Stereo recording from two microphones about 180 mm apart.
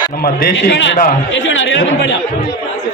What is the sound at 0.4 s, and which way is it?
A man's voice, 75° left (ahead or behind).